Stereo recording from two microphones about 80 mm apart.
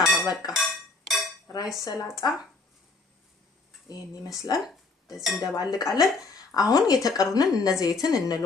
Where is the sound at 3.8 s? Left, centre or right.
Left.